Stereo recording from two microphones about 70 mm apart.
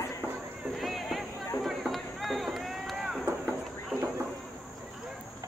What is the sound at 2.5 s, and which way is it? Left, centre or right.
Run, centre.